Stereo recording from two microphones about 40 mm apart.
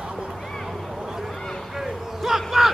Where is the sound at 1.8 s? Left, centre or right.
Centre.